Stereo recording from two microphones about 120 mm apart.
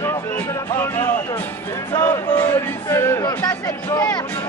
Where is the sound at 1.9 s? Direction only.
25° left (ahead or behind).